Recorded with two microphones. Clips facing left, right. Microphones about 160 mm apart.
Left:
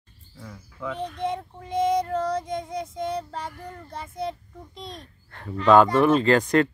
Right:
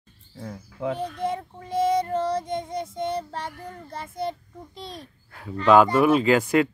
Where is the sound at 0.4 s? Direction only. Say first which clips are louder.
Right 5 dB; 40° right (ahead or behind).